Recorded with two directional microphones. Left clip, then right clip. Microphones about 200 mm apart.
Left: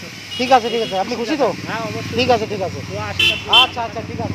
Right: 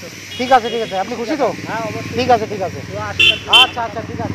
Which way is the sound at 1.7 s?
50° left (ahead or behind).